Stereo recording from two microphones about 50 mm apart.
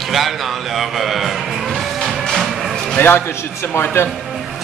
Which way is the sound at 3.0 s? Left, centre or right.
Left.